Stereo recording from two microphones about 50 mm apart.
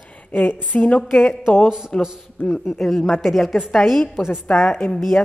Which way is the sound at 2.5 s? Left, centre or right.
Centre.